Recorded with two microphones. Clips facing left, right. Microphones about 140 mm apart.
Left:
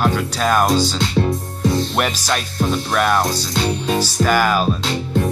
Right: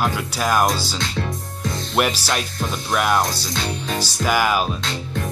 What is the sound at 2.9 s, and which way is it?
Music, 10° right (ahead or behind).